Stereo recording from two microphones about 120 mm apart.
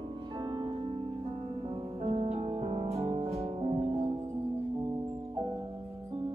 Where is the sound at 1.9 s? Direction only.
55° right (ahead or behind).